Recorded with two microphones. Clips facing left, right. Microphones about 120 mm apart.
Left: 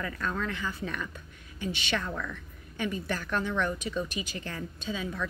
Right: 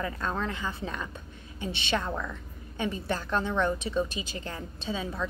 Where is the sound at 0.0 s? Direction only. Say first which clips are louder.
Right 2 dB; 30° right (ahead or behind).